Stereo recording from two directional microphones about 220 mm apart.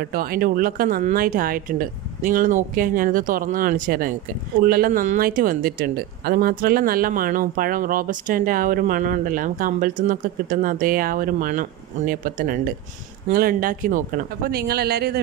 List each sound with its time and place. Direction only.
0.0 s speech: 40° right (ahead or behind)